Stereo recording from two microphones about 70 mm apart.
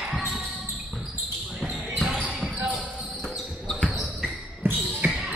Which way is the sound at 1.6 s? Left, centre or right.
Centre.